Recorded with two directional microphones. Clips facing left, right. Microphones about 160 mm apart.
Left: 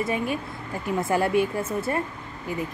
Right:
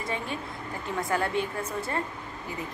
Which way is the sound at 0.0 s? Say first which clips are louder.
Left 7 dB; 15° left (ahead or behind).